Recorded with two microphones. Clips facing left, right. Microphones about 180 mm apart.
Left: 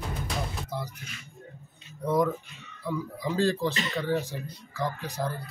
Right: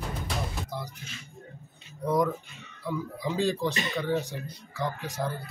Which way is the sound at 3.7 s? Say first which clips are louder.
Even; 15° right (ahead or behind).